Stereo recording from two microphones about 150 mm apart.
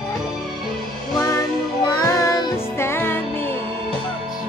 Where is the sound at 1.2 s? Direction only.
25° left (ahead or behind).